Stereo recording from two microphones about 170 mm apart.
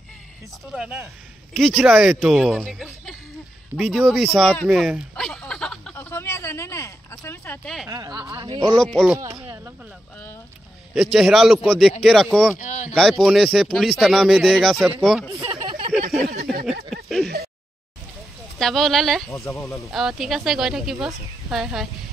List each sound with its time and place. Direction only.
0.7 s speech: 5° right (ahead or behind)
5.9 s a sound: 15° left (ahead or behind)
7.9 s speech: 20° right (ahead or behind)
8.7 s speech: centre (ahead or behind)
11.0 s speech: centre (ahead or behind)
12.5 s speech: 45° left (ahead or behind)
12.9 s speech: centre (ahead or behind)
15.4 s a sound: 25° right (ahead or behind)
15.9 s speech: centre (ahead or behind)
16.9 s a sound: centre (ahead or behind)
18.6 s speech: centre (ahead or behind)
19.3 s speech: 20° left (ahead or behind)
19.9 s speech: centre (ahead or behind)